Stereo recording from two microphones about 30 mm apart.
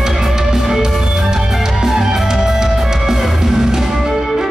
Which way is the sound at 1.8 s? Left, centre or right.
Centre.